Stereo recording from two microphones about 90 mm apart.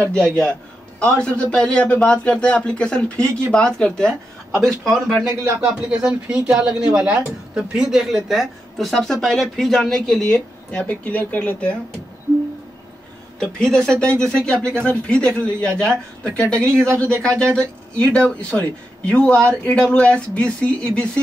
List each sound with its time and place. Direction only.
0.0 s a man's voice: 10° left (ahead or behind)
5.2 s speech: 25° right (ahead or behind)
5.6 s a man's voice: 10° right (ahead or behind); by 11.7 s 15° left (ahead or behind)
13.4 s a man's voice: 5° left (ahead or behind)
16.8 s speech: 30° right (ahead or behind)
17.2 s a man's voice: 10° left (ahead or behind)